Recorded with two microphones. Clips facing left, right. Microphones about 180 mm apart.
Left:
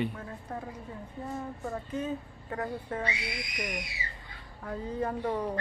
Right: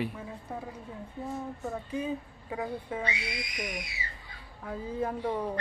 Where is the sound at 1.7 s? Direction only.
10° right (ahead or behind).